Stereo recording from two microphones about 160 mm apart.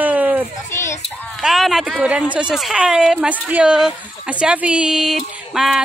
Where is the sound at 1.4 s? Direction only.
Centre (ahead or behind).